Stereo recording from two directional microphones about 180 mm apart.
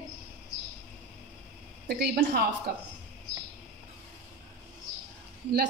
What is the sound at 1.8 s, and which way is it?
Speech, 60° right (ahead or behind).